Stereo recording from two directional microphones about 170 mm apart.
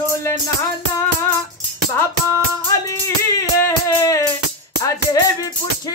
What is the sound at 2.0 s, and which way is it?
Music, 20° left (ahead or behind).